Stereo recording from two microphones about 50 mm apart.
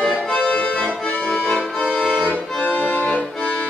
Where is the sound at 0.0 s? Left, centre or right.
Centre.